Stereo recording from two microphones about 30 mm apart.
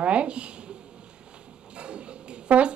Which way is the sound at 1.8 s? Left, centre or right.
Right.